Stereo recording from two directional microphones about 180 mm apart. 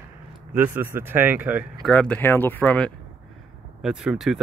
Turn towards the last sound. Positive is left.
turn(degrees=0)  # may be behind; listen again after turning